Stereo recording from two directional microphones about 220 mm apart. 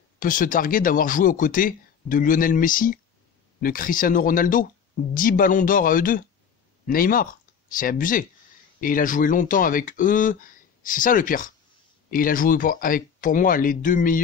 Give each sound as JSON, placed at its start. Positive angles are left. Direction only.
{"t": 0.2, "sound": "speech", "side_deg": 40}